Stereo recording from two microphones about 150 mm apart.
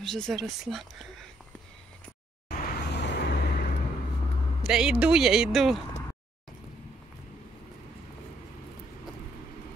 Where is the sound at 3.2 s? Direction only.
90° left.